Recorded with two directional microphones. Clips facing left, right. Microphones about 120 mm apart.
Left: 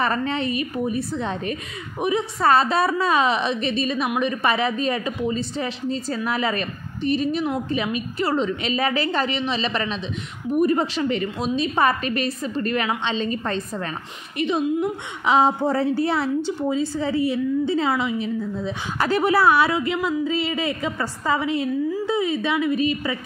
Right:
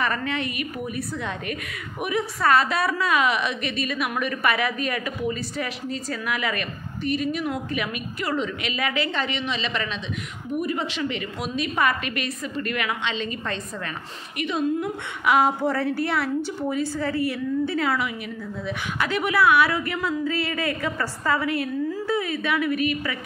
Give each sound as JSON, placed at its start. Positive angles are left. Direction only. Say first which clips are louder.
{"t": 0.0, "sound": "a woman's voice", "louder": "left 3 dB", "side_deg": 30}
{"t": 14.4, "sound": "a woman's voice", "louder": "left 3 dB", "side_deg": 25}
{"t": 19.7, "sound": "a woman's voice", "louder": "left 3 dB", "side_deg": 20}